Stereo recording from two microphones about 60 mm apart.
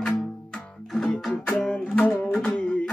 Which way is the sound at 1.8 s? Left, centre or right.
Left.